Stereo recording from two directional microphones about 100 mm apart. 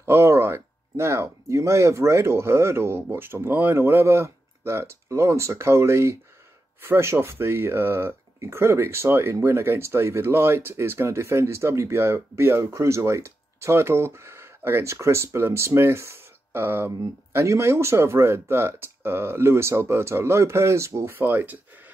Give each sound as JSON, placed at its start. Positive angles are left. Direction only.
{"t": 0.0, "sound": "speech", "side_deg": -25}